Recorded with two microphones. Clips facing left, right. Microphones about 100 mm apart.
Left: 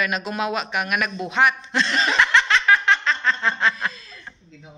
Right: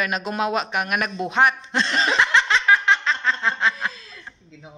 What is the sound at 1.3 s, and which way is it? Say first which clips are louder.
Laughter: right 1 dB; 35° right (ahead or behind).